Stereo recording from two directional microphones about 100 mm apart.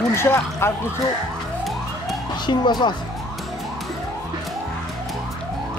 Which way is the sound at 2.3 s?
50° left (ahead or behind).